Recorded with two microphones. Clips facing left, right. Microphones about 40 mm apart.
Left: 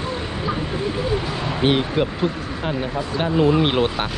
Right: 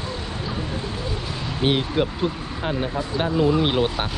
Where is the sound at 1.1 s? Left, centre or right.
Left.